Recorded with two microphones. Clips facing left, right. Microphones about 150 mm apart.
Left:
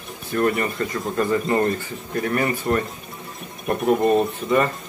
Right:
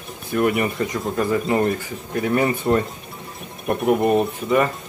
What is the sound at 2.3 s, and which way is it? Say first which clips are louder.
Speech: right 3 dB; 25° right (ahead or behind).